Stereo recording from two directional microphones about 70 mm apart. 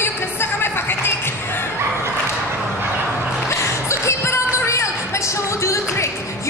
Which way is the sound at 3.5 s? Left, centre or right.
Left.